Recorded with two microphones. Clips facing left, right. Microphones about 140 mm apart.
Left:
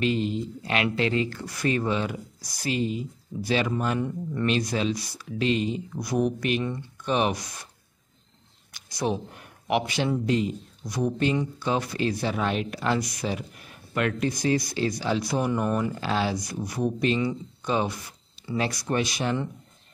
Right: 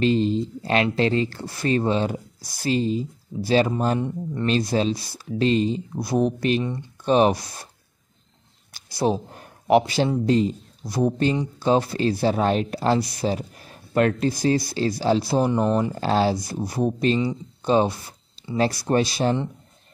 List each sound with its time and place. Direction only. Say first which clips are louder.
0.0 s speech: right 5 dB; 30° right (ahead or behind)
4.0 s speech: right 2 dB; 20° right (ahead or behind)
8.7 s speech: right 5 dB; 30° right (ahead or behind)
17.6 s a sound: right 7 dB; 30° right (ahead or behind)
18.6 s speech: right 6 dB; 35° right (ahead or behind)